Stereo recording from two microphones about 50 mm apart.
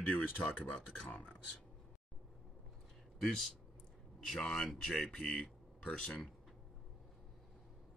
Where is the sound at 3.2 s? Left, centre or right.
Centre.